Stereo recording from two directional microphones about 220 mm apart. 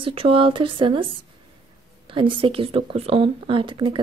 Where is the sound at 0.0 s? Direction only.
25° right (ahead or behind).